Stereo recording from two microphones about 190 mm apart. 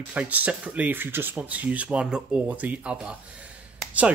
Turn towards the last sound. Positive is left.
turn(degrees=-5)  # may be behind; listen again after turning